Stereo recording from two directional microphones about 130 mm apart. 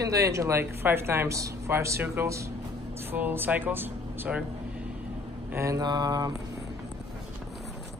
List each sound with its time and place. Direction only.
0.0 s speech: 25° right (ahead or behind)
5.5 s mantra: 25° right (ahead or behind)